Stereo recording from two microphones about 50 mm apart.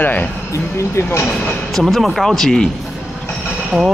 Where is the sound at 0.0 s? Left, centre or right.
Left.